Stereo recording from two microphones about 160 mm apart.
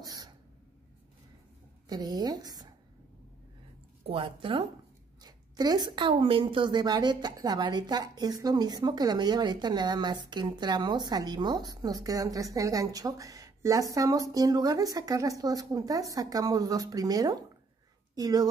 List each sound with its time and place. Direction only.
0.0 s a sound: 25° right (ahead or behind)
1.9 s a woman's voice: 25° right (ahead or behind)
4.0 s a woman's voice: 35° right (ahead or behind)